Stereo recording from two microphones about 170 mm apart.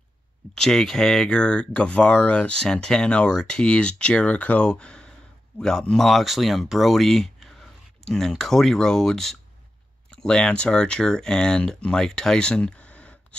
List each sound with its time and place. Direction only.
0.6 s speech: 5° left (ahead or behind)